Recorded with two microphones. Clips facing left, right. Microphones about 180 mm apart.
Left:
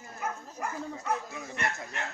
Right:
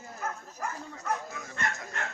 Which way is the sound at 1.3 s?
20° left (ahead or behind).